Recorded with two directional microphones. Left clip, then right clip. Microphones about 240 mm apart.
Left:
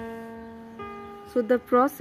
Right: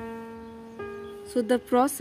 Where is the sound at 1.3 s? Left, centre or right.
Right.